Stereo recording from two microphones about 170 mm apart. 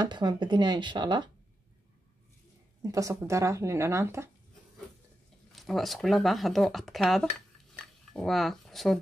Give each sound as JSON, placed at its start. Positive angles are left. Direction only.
{"t": 0.0, "sound": "speech", "side_deg": -25}
{"t": 2.8, "sound": "speech", "side_deg": -20}
{"t": 5.5, "sound": "speech", "side_deg": 0}